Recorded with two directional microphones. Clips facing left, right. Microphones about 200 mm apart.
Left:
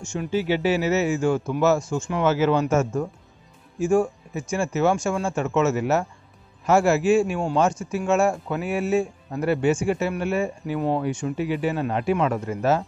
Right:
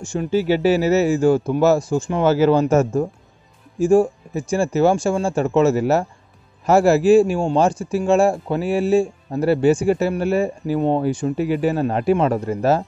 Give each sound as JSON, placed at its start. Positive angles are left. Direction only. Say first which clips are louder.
{"t": 0.0, "sound": "a man's voice", "louder": "right 5 dB", "side_deg": -35}